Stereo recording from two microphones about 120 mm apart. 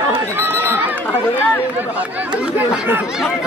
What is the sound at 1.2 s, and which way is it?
Run, 15° left (ahead or behind).